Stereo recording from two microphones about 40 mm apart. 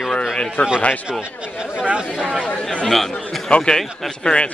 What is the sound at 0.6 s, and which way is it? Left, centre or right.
Speech, left.